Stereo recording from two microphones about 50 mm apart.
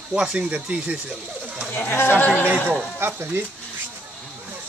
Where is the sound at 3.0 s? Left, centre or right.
Right.